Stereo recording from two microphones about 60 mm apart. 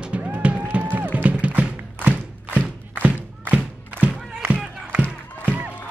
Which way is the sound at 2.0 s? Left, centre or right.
Right.